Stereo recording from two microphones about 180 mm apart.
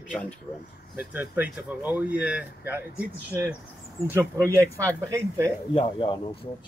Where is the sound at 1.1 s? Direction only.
10° right (ahead or behind).